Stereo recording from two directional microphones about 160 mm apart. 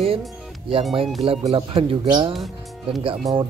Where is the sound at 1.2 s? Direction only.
35° right (ahead or behind).